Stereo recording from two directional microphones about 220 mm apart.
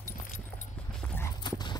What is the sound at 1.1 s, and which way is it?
Clip-clop, 15° left (ahead or behind).